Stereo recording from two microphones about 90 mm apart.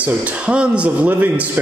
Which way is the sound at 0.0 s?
15° right (ahead or behind).